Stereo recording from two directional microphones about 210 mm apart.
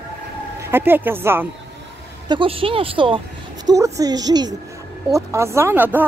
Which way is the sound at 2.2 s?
25° right (ahead or behind).